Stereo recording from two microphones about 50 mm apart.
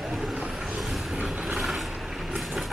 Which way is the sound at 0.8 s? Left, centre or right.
Centre.